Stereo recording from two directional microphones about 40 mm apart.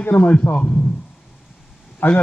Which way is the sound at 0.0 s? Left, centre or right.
Left.